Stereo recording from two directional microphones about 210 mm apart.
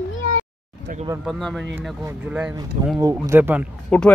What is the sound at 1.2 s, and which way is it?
Speech, centre (ahead or behind).